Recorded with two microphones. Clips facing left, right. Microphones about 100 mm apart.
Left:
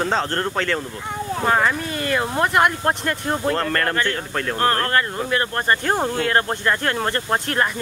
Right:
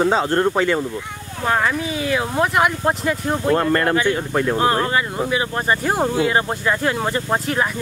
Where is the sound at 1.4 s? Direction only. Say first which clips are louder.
Right 1 dB; centre (ahead or behind).